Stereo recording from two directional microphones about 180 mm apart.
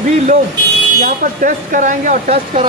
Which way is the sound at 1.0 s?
50° right (ahead or behind).